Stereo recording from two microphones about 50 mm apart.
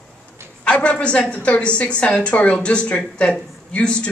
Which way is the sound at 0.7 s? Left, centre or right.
Left.